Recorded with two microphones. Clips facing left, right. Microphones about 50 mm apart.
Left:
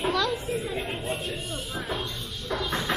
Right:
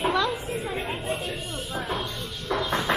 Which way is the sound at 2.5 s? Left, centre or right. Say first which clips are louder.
Right 3 dB; right.